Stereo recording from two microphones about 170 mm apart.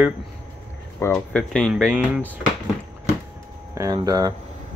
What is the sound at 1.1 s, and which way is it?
Speech, 5° left (ahead or behind).